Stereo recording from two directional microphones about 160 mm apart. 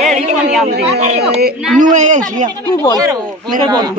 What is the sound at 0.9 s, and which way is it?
A man's voice, 45° right (ahead or behind).